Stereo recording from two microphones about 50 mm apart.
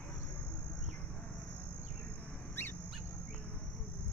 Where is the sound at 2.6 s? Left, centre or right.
Left.